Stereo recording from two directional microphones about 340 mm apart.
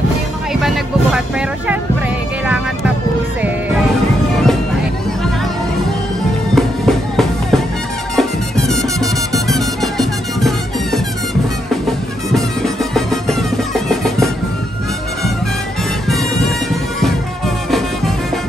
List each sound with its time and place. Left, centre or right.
0.5 s music: centre
2.4 s music: centre
6.5 s music: centre
12.4 s music: centre